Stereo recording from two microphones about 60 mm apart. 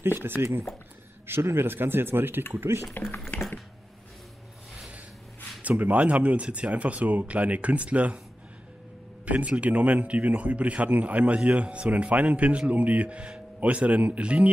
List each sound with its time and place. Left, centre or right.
0.0 s speech: right
2.9 s speech: left
5.6 s speech: right
9.2 s speech: right